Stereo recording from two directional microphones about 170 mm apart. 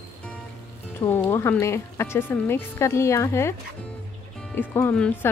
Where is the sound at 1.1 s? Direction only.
15° left (ahead or behind).